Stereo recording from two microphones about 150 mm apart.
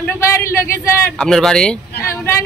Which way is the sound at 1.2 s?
5° left (ahead or behind).